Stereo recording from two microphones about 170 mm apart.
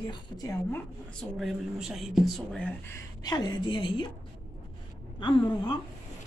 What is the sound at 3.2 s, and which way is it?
Speech, 25° left (ahead or behind).